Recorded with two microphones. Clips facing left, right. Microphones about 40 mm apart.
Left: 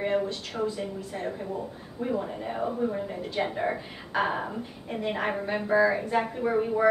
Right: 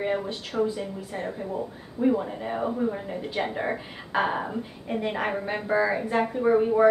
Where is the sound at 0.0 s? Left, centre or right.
Centre.